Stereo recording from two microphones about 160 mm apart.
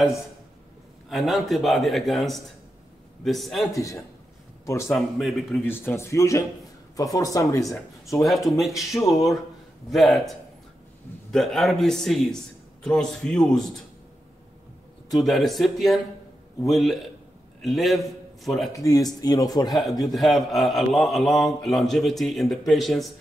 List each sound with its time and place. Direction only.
1.0 s a man's voice: centre (ahead or behind)
3.7 s a man's voice: 20° left (ahead or behind)
4.8 s a man's voice: centre (ahead or behind)
5.7 s a man's voice: 15° left (ahead or behind)
8.3 s a man's voice: centre (ahead or behind)
8.9 s a man's voice: 20° left (ahead or behind)
9.8 s a man's voice: centre (ahead or behind)
11.3 s a man's voice: centre (ahead or behind)
15.1 s a man's voice: centre (ahead or behind)
18.7 s a man's voice: 20° left (ahead or behind)
19.7 s a man's voice: centre (ahead or behind)